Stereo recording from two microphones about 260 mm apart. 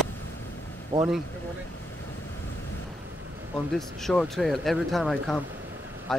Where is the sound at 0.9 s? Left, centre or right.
Centre.